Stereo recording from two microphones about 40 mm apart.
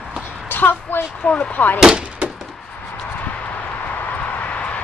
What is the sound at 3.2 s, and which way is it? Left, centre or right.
Vehicle, left.